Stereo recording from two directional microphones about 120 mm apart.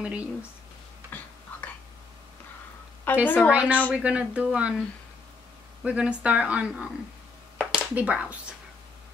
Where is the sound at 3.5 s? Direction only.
10° right (ahead or behind).